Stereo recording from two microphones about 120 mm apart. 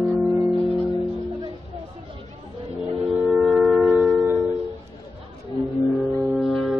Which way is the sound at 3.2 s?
10° right (ahead or behind).